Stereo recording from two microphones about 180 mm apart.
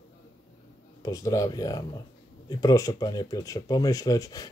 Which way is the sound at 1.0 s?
20° left (ahead or behind).